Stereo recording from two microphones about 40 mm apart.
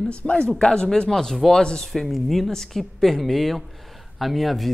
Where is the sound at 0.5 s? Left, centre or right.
Centre.